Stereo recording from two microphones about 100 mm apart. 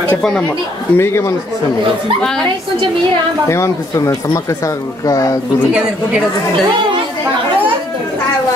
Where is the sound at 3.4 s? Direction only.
30° left (ahead or behind).